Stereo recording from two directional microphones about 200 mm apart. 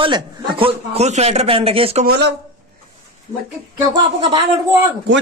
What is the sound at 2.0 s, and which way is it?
Speech, 60° right (ahead or behind).